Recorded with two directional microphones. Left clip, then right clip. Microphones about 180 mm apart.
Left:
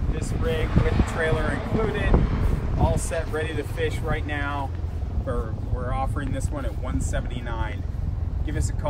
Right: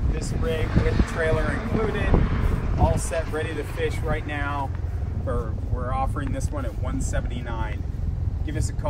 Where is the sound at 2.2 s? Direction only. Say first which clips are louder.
Right 1 dB; 55° left (ahead or behind).